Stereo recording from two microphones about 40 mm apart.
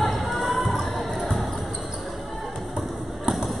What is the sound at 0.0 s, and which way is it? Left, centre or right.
Basketball bounce, centre.